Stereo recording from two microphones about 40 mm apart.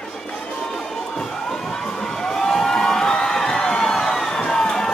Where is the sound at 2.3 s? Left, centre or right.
Centre.